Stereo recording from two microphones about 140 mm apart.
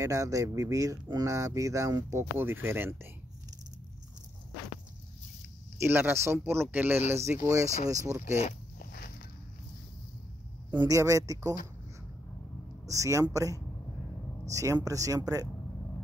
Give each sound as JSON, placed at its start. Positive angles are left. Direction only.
{"t": 0.0, "sound": "speech", "side_deg": -25}
{"t": 5.8, "sound": "speech", "side_deg": -15}
{"t": 8.4, "sound": "a sound", "side_deg": 75}
{"t": 10.7, "sound": "speech", "side_deg": -25}
{"t": 12.8, "sound": "speech", "side_deg": -20}